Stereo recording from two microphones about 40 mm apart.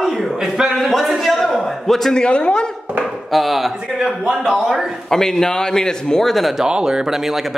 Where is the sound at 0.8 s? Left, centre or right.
Centre.